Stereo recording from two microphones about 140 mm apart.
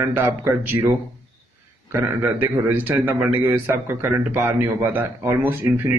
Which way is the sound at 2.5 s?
15° right (ahead or behind).